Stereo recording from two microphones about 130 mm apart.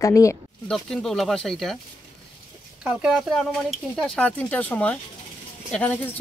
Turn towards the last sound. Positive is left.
turn(degrees=10)  # may be behind; listen again after turning